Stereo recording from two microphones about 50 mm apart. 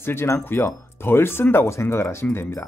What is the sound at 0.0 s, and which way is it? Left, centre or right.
Speech, left.